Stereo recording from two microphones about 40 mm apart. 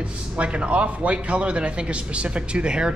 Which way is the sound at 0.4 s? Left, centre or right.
Right.